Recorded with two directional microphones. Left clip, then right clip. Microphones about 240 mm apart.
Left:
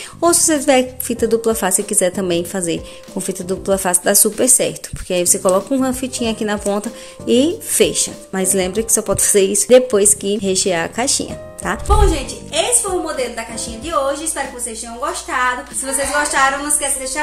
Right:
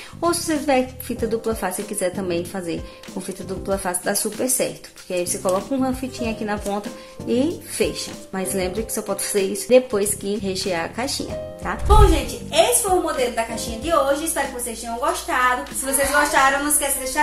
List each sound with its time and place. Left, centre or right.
0.2 s a woman's voice: left
12.1 s a woman's voice: centre
15.0 s a woman's voice: centre